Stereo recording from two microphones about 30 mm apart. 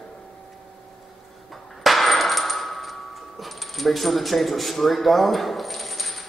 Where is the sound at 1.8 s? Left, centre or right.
Centre.